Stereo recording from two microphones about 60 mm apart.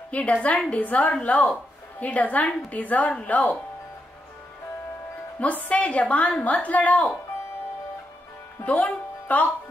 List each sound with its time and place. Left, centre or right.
0.1 s a woman's voice: left
5.4 s a woman's voice: left
8.6 s speech: left